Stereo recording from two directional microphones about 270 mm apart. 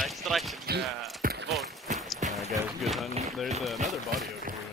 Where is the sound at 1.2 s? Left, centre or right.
Right.